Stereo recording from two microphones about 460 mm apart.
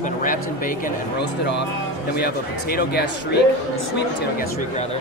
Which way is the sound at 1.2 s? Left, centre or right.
Left.